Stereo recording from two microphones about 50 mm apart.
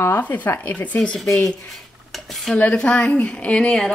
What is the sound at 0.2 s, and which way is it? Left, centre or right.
Speech, left.